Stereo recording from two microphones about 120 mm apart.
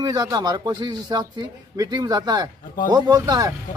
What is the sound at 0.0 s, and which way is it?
Speech, 35° right (ahead or behind).